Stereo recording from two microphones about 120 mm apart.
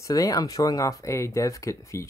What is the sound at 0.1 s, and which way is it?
Speech, 30° left (ahead or behind).